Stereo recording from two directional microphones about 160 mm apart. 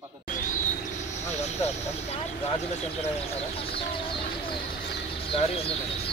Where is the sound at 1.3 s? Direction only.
45° left (ahead or behind).